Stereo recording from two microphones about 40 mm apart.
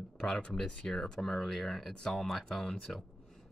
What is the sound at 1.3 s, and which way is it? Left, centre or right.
Speech, centre.